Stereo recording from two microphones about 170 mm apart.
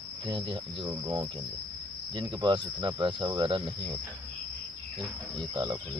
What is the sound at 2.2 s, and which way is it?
Speech, 30° right (ahead or behind).